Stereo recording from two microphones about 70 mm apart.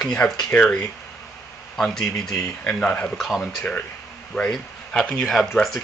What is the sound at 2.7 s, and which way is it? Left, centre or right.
Speech, centre.